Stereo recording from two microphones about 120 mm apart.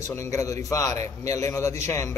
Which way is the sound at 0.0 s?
25° left (ahead or behind).